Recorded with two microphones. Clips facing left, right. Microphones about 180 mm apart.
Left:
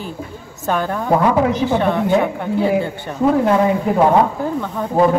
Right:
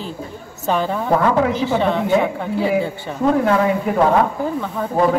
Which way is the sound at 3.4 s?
15° left (ahead or behind).